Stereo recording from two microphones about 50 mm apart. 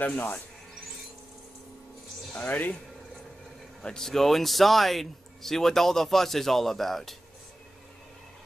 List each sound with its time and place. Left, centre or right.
0.0 s speech: left
2.3 s speech: left
3.8 s speech: centre